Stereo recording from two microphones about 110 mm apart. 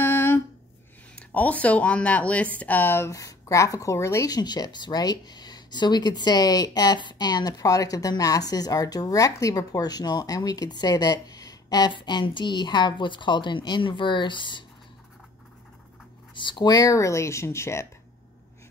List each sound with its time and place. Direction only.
0.0 s a sound: 20° left (ahead or behind)
1.1 s speech: 15° left (ahead or behind); by 14.6 s 45° left (ahead or behind)
16.3 s speech: 45° left (ahead or behind); by 17.8 s 25° left (ahead or behind)